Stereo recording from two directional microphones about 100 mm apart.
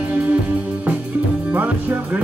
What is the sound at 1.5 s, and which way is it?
Music, 20° right (ahead or behind).